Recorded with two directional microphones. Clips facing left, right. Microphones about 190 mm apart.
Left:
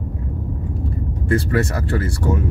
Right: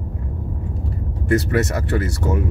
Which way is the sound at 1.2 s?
20° right (ahead or behind).